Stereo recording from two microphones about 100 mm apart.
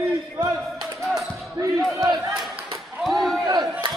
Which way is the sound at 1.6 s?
35° right (ahead or behind).